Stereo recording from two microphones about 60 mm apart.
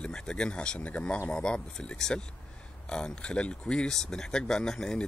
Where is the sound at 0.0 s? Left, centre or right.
Centre.